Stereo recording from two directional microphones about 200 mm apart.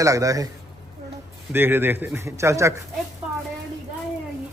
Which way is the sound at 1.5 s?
10° right (ahead or behind).